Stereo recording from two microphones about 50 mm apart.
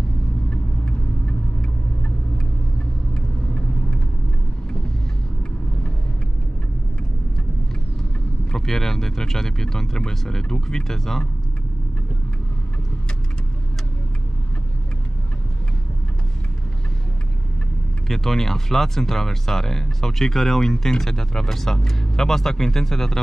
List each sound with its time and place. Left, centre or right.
0.5 s vehicle: left
8.5 s speech: centre
18.0 s speech: centre